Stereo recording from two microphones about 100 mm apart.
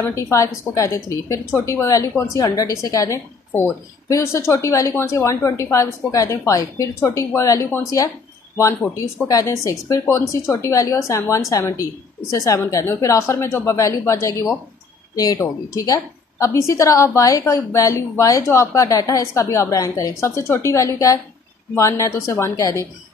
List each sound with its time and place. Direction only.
0.1 s a woman's voice: 30° left (ahead or behind)